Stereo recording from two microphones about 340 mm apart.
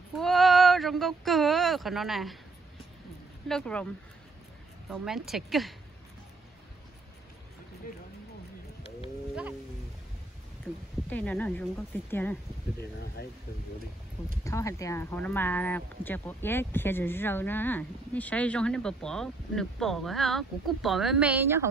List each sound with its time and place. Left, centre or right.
0.1 s a sound: centre
3.4 s speech: centre
11.1 s speech: centre
13.0 s speech: left
14.4 s speech: centre